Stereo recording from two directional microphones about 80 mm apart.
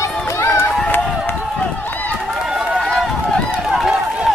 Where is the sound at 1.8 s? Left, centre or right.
Left.